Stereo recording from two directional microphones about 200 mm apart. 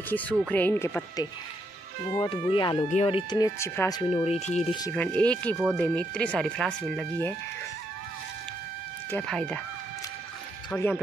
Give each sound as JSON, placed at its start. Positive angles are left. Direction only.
{"t": 0.1, "sound": "speech", "side_deg": 10}
{"t": 2.2, "sound": "speech", "side_deg": 25}
{"t": 4.1, "sound": "speech", "side_deg": 30}
{"t": 4.9, "sound": "speech", "side_deg": 5}
{"t": 9.1, "sound": "speech", "side_deg": 5}
{"t": 10.7, "sound": "speech", "side_deg": 10}